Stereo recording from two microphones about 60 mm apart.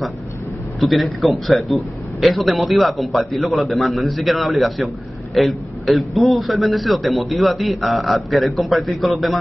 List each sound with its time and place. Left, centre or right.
0.7 s a man's voice: centre